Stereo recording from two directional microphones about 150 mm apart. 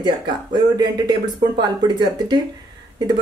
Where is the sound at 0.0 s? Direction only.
30° right (ahead or behind).